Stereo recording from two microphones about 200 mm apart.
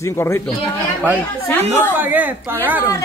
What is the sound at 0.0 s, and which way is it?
Speech, 15° left (ahead or behind).